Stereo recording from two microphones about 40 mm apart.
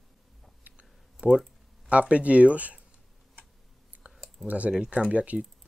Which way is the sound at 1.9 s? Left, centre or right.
Right.